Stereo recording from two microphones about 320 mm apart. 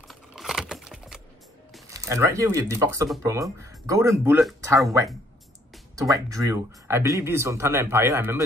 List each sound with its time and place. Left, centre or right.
0.1 s computer keyboard: centre
1.7 s speech: centre
5.9 s speech: centre